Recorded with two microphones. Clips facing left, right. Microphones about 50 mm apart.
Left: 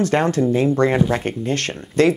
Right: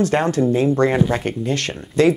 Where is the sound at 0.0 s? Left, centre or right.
Left.